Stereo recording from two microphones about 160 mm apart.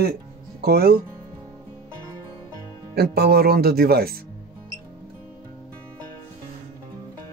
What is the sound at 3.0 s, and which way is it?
Speech, 80° right.